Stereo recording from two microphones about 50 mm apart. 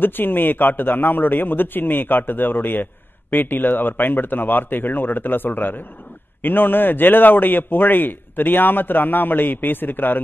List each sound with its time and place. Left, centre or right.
0.0 s a man's voice: left